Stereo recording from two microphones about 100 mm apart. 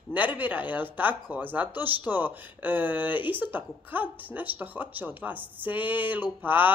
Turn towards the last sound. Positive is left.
turn(degrees=-20)  # may be behind; listen again after turning